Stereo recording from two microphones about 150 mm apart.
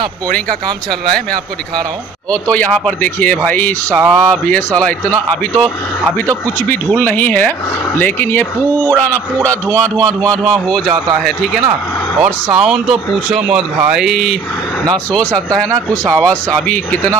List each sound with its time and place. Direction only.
2.3 s speech: 10° left (ahead or behind)